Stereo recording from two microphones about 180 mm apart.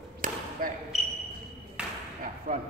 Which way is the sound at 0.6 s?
50° right (ahead or behind).